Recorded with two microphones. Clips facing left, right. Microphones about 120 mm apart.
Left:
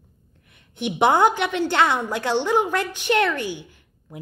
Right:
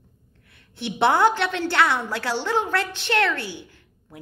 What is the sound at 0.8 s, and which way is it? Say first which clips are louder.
A woman's voice: left 2 dB; 15° left (ahead or behind).